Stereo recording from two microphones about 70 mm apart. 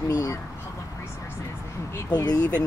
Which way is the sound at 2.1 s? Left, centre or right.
Left.